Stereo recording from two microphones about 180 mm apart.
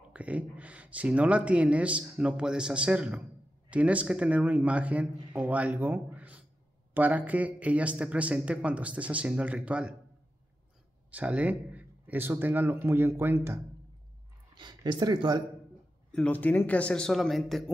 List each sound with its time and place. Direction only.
0.1 s speech: 5° right (ahead or behind)
11.1 s speech: 5° right (ahead or behind)
14.6 s speech: 25° right (ahead or behind)
16.1 s a man's voice: 5° left (ahead or behind)